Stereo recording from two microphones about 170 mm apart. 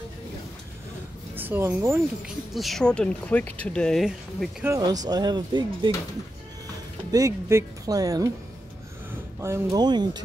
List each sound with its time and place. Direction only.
1.3 s speech: 10° right (ahead or behind)
2.2 s speech: centre (ahead or behind)
4.6 s speech: 20° right (ahead or behind)
7.1 s speech: 20° right (ahead or behind)
9.4 s speech: 20° right (ahead or behind)